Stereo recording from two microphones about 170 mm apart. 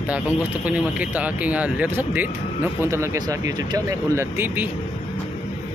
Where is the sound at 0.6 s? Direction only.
10° right (ahead or behind).